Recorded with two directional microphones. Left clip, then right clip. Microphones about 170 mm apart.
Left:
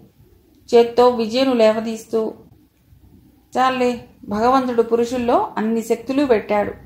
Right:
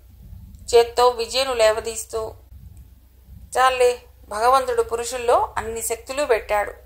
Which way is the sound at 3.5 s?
45° right (ahead or behind).